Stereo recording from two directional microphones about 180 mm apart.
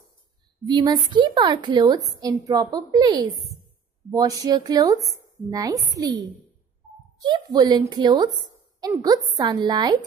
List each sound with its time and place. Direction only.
0.7 s a woman's voice: 25° right (ahead or behind)
7.2 s a woman's voice: 25° right (ahead or behind)